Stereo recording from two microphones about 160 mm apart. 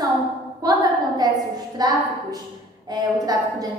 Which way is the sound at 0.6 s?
25° right (ahead or behind).